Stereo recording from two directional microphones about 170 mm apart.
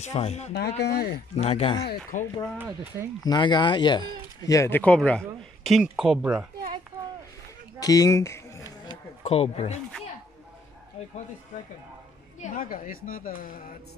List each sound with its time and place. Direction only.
0.0 s speech: 40° left (ahead or behind)
0.5 s speech: 75° left (ahead or behind)
1.3 s speech: 40° left (ahead or behind)
2.1 s speech: 50° left (ahead or behind)
2.6 s speech: 10° right (ahead or behind)
3.3 s speech: 25° left (ahead or behind); by 6.4 s 5° right (ahead or behind)
7.8 s speech: 20° left (ahead or behind)
9.2 s speech: 40° left (ahead or behind)
12.4 s speech: 55° left (ahead or behind)